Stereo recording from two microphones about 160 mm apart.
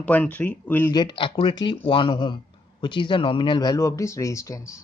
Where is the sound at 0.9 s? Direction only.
30° left (ahead or behind).